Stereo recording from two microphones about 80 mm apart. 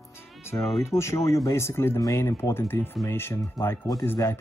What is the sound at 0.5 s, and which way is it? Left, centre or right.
Speech, left.